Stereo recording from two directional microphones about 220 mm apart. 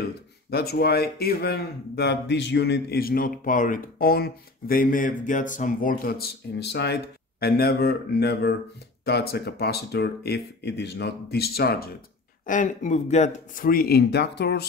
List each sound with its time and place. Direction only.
0.0 s speech: 45° left (ahead or behind)